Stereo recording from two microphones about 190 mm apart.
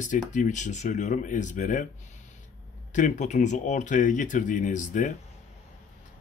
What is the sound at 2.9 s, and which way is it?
Speech, 40° left (ahead or behind).